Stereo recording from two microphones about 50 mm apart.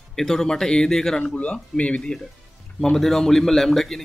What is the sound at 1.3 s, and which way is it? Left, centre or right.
Speech, left.